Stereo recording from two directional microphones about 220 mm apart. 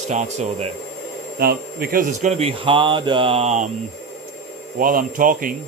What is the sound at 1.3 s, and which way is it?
Speech, 45° right (ahead or behind).